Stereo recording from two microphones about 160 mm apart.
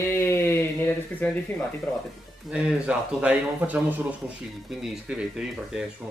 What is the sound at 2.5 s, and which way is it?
Speech, 5° right (ahead or behind).